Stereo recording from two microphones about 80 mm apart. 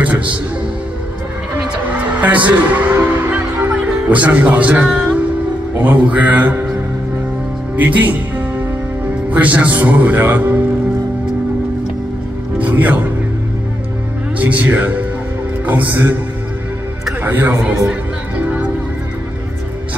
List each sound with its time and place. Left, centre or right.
1.6 s music: centre
5.8 s a man's voice: right
7.7 s a man's voice: right
9.3 s a man's voice: centre
12.5 s music: centre
14.4 s a man's voice: centre
17.2 s a man's voice: right
18.4 s music: centre